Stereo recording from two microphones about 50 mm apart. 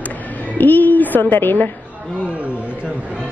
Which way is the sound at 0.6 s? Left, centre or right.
Left.